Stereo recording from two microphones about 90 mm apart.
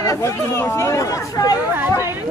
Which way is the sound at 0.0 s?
35° left (ahead or behind).